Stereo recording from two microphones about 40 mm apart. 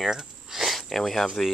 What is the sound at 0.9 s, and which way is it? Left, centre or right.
Speech, centre.